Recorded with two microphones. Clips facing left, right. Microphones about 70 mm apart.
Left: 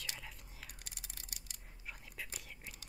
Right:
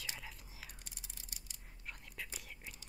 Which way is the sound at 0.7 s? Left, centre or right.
Left.